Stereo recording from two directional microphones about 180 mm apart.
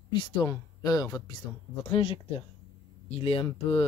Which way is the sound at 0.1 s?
25° left (ahead or behind).